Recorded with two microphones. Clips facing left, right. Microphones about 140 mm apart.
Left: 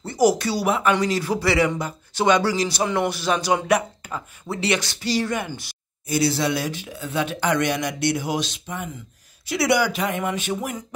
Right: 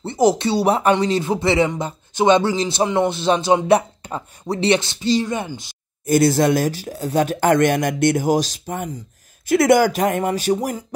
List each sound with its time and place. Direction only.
0.0 s speech: 25° right (ahead or behind)
6.0 s speech: 50° right (ahead or behind)